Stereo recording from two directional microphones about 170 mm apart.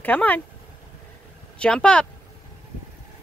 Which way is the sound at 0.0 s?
10° left (ahead or behind).